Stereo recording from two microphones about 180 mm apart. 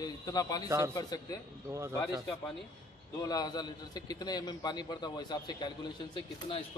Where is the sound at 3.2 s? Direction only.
20° left (ahead or behind).